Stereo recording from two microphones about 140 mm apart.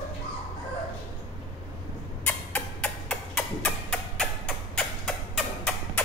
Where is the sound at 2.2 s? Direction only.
10° left (ahead or behind).